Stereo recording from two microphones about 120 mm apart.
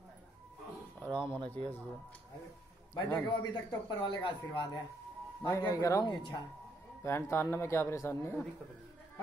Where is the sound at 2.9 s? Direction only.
35° left (ahead or behind).